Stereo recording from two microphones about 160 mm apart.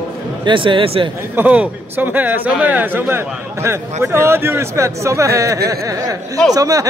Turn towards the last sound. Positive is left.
turn(degrees=-20)  # may be behind; listen again after turning